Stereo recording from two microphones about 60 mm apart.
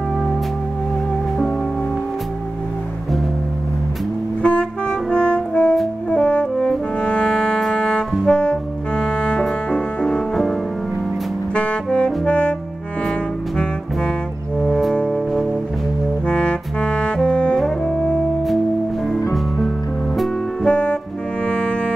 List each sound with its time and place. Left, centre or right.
4.4 s music: centre
8.3 s clarinet: centre
9.4 s music: centre
11.5 s saxophone: centre
15.0 s music: centre
17.6 s saxophone: centre
20.6 s music: centre